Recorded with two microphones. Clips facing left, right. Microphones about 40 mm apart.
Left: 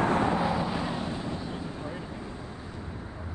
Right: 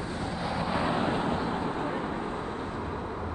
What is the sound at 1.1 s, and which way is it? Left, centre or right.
Vehicle, right.